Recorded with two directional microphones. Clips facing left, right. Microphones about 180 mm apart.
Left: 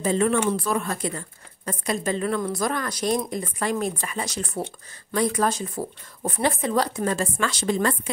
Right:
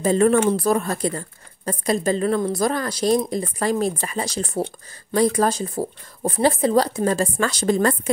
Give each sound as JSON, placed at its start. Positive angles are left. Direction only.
{"t": 0.0, "sound": "speech", "side_deg": -40}